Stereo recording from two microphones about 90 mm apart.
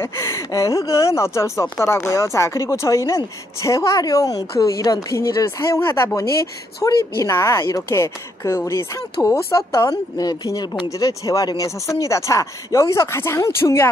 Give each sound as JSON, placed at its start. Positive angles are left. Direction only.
{"t": 0.0, "sound": "speech", "side_deg": 30}